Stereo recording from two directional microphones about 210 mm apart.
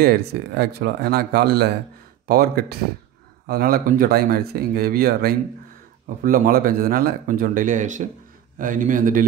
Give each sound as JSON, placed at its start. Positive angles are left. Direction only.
{"t": 0.0, "sound": "speech", "side_deg": -50}